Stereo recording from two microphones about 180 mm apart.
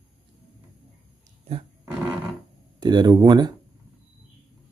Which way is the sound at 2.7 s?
25° right (ahead or behind).